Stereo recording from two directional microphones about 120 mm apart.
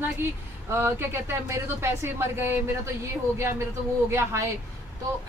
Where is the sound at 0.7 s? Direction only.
20° right (ahead or behind).